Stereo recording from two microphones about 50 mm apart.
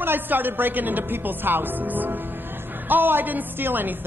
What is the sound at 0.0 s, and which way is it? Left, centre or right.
Speech, right.